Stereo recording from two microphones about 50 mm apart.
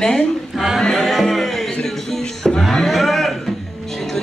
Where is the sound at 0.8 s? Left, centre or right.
Centre.